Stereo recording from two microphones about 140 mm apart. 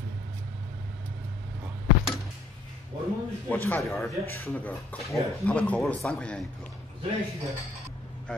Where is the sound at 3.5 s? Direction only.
15° left (ahead or behind).